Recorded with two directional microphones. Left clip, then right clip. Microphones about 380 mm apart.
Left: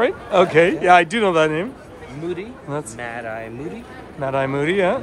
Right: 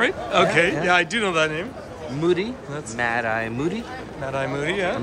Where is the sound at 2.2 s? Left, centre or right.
Right.